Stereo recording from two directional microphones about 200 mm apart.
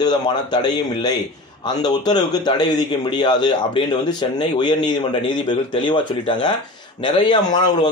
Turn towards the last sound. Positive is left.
turn(degrees=20)  # may be behind; listen again after turning